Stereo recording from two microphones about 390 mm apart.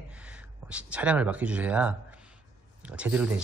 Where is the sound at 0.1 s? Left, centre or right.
Centre.